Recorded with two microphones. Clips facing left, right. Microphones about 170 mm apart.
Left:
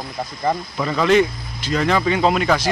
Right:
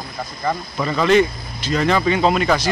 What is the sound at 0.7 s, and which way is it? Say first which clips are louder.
Speech: right 1 dB; 5° left (ahead or behind).